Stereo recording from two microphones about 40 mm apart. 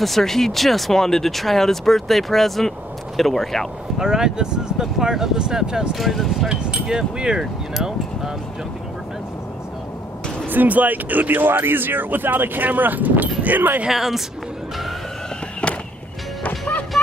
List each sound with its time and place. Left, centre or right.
0.0 s speech: centre
4.0 s speech: centre
5.9 s speech: centre
6.5 s speech: right
10.5 s speech: right
13.8 s speech: centre
15.6 s music: left
17.0 s a sound: centre